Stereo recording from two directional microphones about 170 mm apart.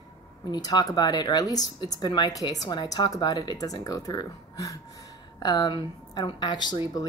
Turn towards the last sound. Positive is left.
turn(degrees=25)  # may be behind; listen again after turning